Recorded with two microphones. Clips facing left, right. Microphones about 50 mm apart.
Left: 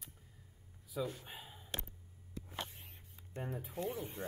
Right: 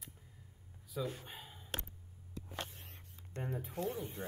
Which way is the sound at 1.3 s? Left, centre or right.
Centre.